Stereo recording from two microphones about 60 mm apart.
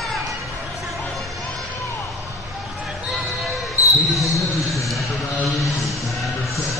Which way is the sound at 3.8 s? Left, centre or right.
Right.